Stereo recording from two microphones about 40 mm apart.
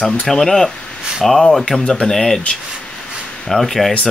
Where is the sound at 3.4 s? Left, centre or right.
Centre.